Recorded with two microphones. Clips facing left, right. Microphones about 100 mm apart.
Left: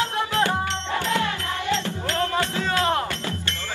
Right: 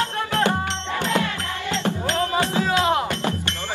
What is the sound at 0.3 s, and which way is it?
Music, 20° right (ahead or behind).